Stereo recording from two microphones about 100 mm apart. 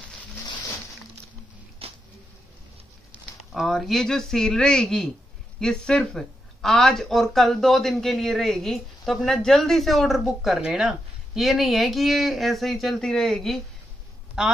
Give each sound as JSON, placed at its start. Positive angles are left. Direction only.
{"t": 1.8, "sound": "a sound", "side_deg": -80}
{"t": 3.5, "sound": "speech", "side_deg": 0}
{"t": 14.4, "sound": "speech", "side_deg": -5}